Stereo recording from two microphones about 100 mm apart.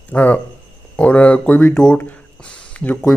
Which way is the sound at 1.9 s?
10° left (ahead or behind).